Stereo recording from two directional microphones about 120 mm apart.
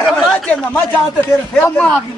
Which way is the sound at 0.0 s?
5° left (ahead or behind).